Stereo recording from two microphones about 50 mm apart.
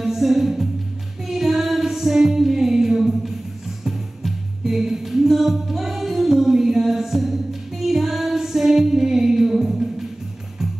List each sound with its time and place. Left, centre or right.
0.0 s music: centre